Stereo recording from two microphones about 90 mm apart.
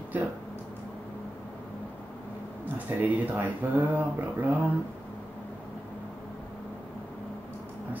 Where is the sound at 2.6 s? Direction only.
20° right (ahead or behind).